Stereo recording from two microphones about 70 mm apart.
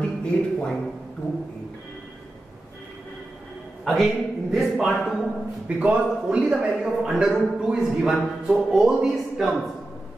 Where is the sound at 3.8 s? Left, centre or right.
Centre.